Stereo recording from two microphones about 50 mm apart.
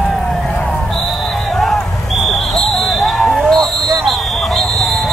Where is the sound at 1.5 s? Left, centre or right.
Centre.